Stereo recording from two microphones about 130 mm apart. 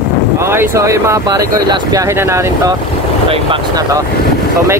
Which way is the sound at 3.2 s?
45° right (ahead or behind).